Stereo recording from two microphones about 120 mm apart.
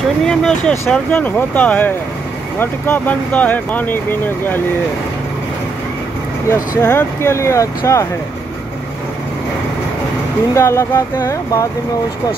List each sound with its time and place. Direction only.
0.2 s speech: 5° left (ahead or behind)
6.5 s speech: 20° left (ahead or behind)
10.5 s speech: 20° left (ahead or behind)